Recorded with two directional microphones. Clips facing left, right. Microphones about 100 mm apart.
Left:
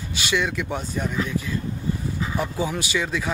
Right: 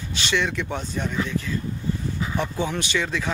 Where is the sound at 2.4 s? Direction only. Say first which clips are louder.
Even; 5° left (ahead or behind).